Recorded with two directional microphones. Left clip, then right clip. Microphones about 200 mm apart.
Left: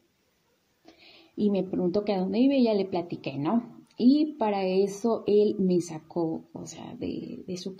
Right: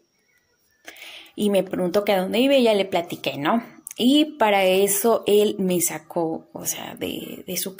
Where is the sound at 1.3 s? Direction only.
45° right (ahead or behind).